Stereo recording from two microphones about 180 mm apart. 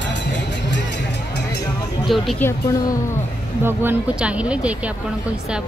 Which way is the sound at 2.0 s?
Centre (ahead or behind).